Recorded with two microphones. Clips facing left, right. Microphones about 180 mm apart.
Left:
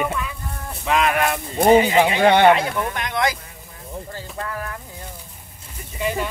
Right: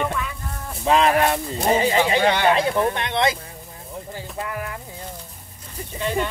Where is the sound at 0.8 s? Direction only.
30° right (ahead or behind).